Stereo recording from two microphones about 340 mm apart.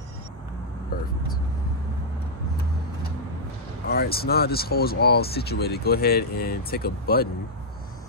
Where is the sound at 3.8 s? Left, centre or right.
Left.